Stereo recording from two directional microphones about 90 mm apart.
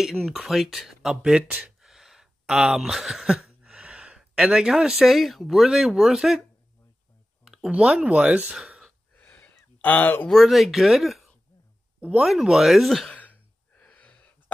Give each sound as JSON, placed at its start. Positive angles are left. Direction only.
{"t": 0.0, "sound": "speech", "side_deg": -5}
{"t": 7.4, "sound": "a sound", "side_deg": -5}
{"t": 7.7, "sound": "speech", "side_deg": -15}
{"t": 9.1, "sound": "a sound", "side_deg": 20}
{"t": 10.2, "sound": "speech", "side_deg": 0}
{"t": 12.0, "sound": "speech", "side_deg": -15}
{"t": 12.3, "sound": "speech", "side_deg": -5}
{"t": 13.1, "sound": "throat clearing", "side_deg": 15}